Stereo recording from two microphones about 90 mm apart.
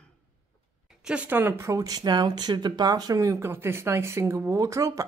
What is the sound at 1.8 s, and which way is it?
Speech, 50° right (ahead or behind).